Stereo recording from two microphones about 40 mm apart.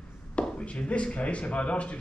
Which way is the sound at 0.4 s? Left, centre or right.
Left.